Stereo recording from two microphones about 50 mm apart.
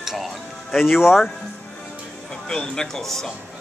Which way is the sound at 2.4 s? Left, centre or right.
Centre.